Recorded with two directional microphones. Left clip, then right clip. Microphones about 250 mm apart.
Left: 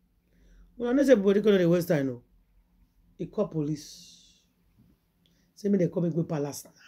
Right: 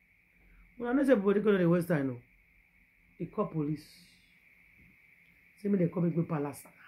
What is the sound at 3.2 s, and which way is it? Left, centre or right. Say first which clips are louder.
Speech: left 4 dB; centre.